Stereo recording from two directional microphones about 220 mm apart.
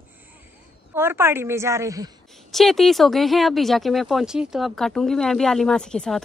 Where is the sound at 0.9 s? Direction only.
10° right (ahead or behind).